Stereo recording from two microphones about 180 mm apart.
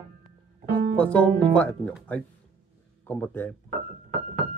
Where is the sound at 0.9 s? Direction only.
10° left (ahead or behind).